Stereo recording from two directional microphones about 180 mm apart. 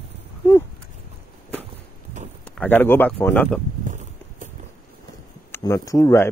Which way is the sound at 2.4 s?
10° left (ahead or behind).